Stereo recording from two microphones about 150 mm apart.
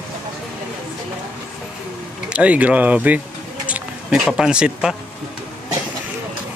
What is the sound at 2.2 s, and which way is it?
Speech, 10° right (ahead or behind).